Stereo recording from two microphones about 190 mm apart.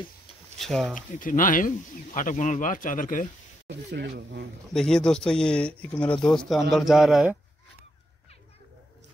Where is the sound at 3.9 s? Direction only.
60° right (ahead or behind).